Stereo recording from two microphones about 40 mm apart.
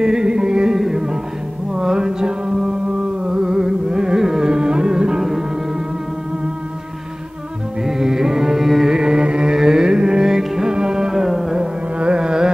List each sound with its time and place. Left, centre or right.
0.0 s music: centre
7.8 s music: centre
8.9 s music: centre
11.6 s carnatic music: right